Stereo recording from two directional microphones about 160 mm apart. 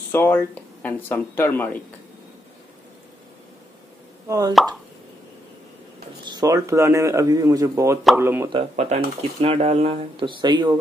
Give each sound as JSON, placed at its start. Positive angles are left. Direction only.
{"t": 0.1, "sound": "speech", "side_deg": 15}
{"t": 4.3, "sound": "speech", "side_deg": -20}
{"t": 6.2, "sound": "speech", "side_deg": -25}
{"t": 8.5, "sound": "speech", "side_deg": -40}